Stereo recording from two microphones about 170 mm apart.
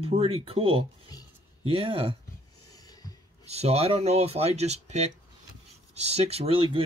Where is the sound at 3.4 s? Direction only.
35° right (ahead or behind).